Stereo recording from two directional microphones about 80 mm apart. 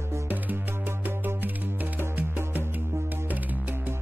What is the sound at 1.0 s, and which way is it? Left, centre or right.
Music, right.